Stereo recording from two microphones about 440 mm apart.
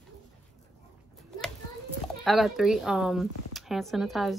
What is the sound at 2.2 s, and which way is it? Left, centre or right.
Speech, centre.